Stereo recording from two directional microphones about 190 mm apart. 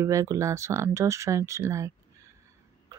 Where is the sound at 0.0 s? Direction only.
15° right (ahead or behind).